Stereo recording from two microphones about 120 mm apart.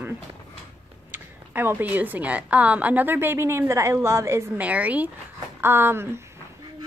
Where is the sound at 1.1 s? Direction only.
15° right (ahead or behind).